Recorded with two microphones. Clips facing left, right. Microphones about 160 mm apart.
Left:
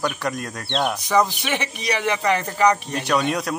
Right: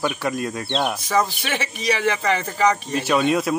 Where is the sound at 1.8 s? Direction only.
10° left (ahead or behind).